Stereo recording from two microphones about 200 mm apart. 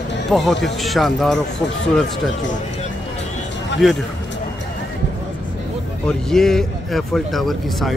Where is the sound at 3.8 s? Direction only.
Centre (ahead or behind).